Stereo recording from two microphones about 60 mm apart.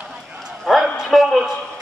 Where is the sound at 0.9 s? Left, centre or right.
Centre.